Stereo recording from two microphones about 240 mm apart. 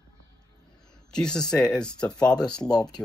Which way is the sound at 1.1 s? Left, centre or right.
Centre.